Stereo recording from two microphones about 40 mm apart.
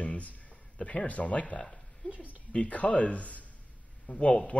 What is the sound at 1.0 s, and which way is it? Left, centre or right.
Speech, left.